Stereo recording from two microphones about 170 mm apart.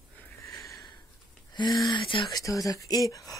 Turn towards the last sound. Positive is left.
turn(degrees=20)  # may be behind; listen again after turning